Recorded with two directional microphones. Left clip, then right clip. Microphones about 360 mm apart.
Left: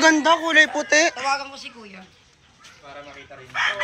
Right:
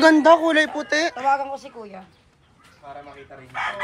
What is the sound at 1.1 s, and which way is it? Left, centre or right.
Speech, right.